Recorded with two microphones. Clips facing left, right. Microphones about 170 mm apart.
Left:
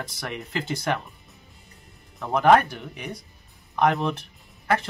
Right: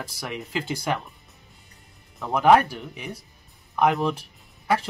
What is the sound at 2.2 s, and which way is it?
Speech, 5° right (ahead or behind).